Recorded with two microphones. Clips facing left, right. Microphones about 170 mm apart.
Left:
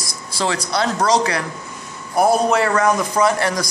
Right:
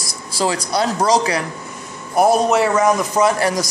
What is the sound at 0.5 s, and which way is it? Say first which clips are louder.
Speech: right 1 dB; 15° right (ahead or behind).